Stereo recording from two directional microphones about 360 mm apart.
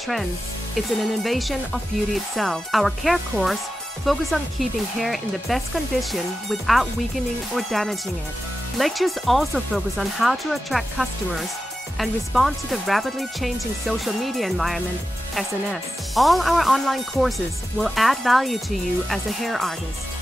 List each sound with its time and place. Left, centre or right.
0.7 s speech: centre